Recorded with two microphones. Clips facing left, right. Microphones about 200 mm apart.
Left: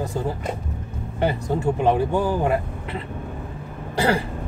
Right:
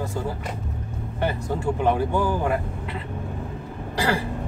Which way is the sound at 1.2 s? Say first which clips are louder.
Left 3 dB; 20° left (ahead or behind).